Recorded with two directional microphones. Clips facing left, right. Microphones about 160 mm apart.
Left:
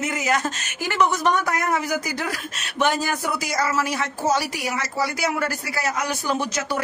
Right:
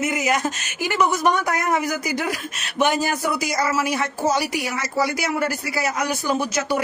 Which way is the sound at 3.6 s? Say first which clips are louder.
Left 1 dB; 10° right (ahead or behind).